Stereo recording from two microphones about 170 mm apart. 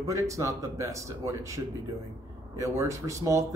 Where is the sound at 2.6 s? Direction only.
20° right (ahead or behind).